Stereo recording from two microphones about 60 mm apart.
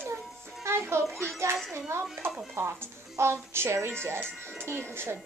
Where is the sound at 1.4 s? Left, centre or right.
Right.